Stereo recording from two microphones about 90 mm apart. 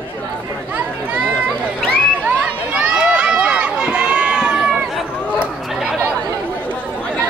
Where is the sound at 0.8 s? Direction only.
10° right (ahead or behind).